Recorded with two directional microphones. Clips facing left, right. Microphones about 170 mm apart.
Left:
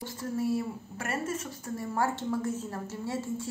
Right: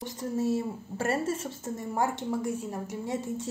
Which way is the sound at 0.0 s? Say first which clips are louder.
Right 2 dB; 20° right (ahead or behind).